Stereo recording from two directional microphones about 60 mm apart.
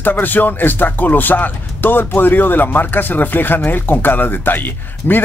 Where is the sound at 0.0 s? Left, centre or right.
Left.